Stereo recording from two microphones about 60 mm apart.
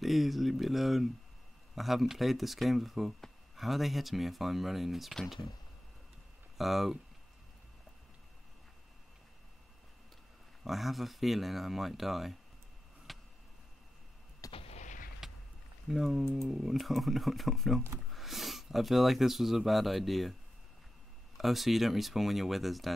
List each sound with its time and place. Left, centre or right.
0.0 s speech: centre
6.6 s speech: centre
10.6 s speech: centre
13.1 s a sound: centre
14.4 s artillery fire: left
15.2 s a sound: centre
15.9 s speech: centre
21.4 s speech: centre